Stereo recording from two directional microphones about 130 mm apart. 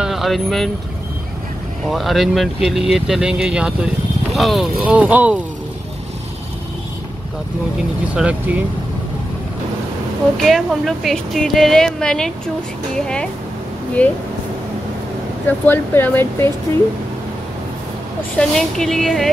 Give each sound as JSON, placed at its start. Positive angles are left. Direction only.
{"t": 0.0, "sound": "speech", "side_deg": 0}
{"t": 1.9, "sound": "speech", "side_deg": 0}
{"t": 4.8, "sound": "speech", "side_deg": -10}
{"t": 8.1, "sound": "speech", "side_deg": -10}
{"t": 10.3, "sound": "speech", "side_deg": 0}
{"t": 15.4, "sound": "speech", "side_deg": 15}
{"t": 18.4, "sound": "speech", "side_deg": 5}